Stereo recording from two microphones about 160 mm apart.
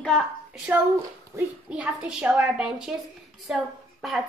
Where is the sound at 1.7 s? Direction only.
5° right (ahead or behind).